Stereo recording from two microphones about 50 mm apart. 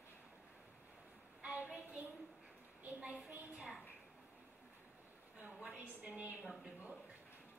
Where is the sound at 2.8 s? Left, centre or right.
Right.